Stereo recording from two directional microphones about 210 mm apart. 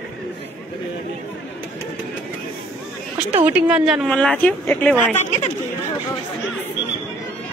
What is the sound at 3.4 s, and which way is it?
Speech, 5° right (ahead or behind).